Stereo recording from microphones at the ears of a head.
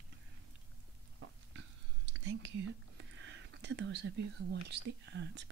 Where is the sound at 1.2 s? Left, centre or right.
Right.